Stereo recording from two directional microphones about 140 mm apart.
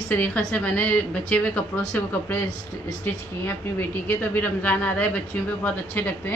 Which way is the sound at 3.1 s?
15° left (ahead or behind).